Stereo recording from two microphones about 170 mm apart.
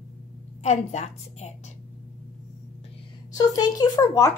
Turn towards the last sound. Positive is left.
turn(degrees=20)  # may be behind; listen again after turning